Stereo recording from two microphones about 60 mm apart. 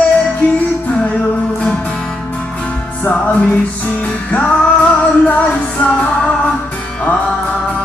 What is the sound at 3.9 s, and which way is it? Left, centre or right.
Music, left.